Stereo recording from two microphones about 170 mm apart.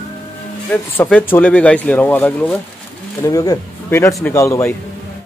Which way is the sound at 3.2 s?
20° left (ahead or behind).